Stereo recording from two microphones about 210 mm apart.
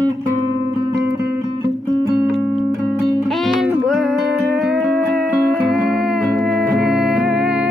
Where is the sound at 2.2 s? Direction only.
Centre (ahead or behind).